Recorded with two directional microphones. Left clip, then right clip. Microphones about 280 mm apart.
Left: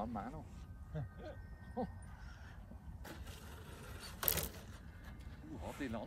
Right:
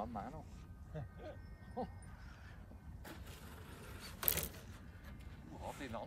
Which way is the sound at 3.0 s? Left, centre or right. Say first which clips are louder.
Left 1 dB; centre.